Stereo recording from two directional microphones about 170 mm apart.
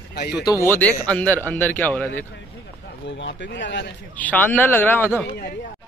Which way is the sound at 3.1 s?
90° left.